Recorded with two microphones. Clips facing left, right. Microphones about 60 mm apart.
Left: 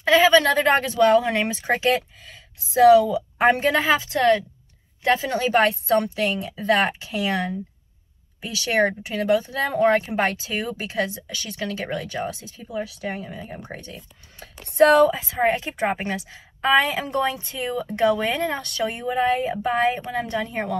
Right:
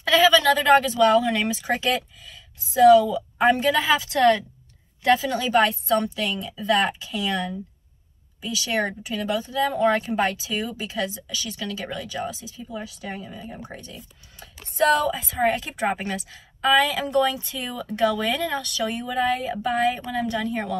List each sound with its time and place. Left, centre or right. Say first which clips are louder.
0.0 s speech: left 2 dB; left
5.0 s speech: even; left
15.5 s a woman's voice: left 1 dB; left
18.6 s speech: left 1 dB; left
19.1 s a woman's voice: left 2 dB; left